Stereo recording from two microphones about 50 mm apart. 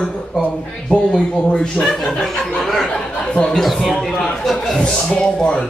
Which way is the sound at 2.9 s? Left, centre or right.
Left.